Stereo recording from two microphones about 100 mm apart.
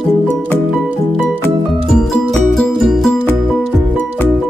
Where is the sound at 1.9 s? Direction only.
5° left (ahead or behind).